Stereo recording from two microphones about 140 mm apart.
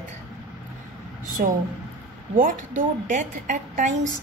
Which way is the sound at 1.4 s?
90° right.